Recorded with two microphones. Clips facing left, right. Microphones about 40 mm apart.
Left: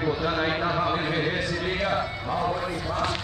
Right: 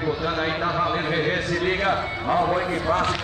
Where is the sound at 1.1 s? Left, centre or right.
Centre.